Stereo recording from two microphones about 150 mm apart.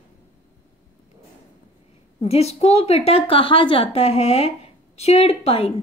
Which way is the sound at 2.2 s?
45° left (ahead or behind).